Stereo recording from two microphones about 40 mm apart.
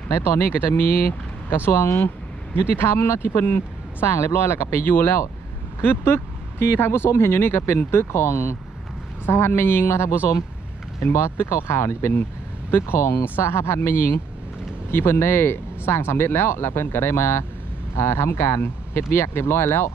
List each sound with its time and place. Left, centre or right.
0.1 s speech: left
1.7 s speech: left
3.4 s speech: left
12.7 s speech: left